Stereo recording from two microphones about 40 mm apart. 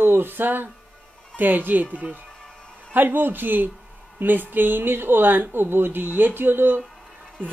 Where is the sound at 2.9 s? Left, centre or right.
Right.